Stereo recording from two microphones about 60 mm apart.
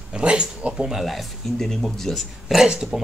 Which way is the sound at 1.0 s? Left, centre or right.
Centre.